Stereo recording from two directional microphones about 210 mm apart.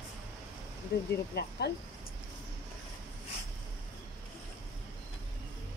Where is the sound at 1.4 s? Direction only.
50° left (ahead or behind).